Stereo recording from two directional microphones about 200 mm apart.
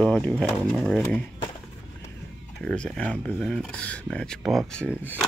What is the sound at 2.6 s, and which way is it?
Speech, 5° left (ahead or behind).